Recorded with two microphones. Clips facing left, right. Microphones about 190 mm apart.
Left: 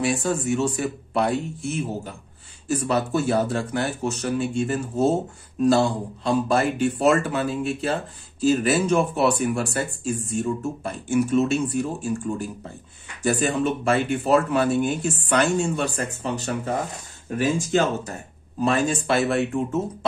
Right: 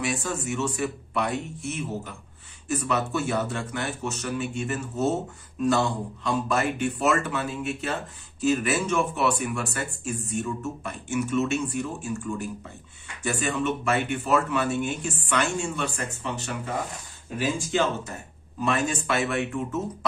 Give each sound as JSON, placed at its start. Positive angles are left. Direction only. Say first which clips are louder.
{"t": 0.0, "sound": "speech", "louder": "left 6 dB", "side_deg": 35}
{"t": 18.6, "sound": "speech", "louder": "left 4 dB", "side_deg": 35}